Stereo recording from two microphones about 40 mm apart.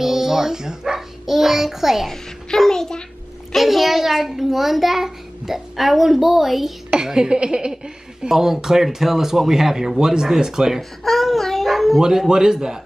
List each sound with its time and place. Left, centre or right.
0.0 s dog: centre
1.2 s speech: centre
2.0 s a child's voice: centre
3.5 s a child's voice: centre
6.9 s a woman's voice: centre
10.8 s babbling: centre
12.0 s speech: centre